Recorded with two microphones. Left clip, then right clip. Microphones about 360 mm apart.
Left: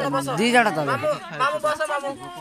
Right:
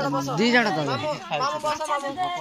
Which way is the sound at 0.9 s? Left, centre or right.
Left.